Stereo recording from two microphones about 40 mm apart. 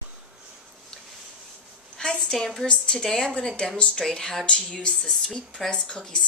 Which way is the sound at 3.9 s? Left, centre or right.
Centre.